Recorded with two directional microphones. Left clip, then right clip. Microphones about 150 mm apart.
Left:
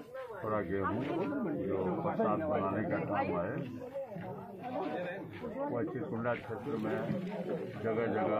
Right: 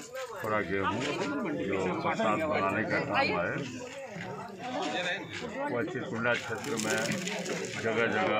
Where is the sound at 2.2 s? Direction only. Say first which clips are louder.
Right 5 dB; 15° right (ahead or behind).